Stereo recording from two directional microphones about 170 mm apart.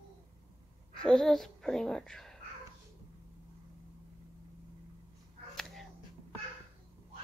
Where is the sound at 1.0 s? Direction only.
5° left (ahead or behind).